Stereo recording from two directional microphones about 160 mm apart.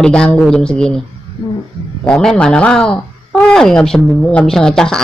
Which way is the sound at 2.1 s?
5° left (ahead or behind).